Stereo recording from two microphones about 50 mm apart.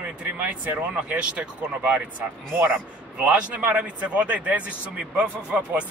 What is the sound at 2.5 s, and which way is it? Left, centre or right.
Speech, right.